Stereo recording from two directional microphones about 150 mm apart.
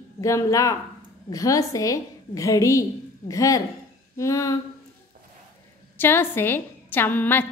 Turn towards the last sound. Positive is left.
turn(degrees=15)  # may be behind; listen again after turning